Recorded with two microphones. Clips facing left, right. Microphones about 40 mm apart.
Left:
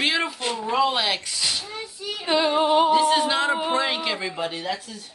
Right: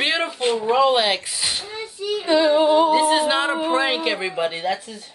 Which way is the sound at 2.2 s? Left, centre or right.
Centre.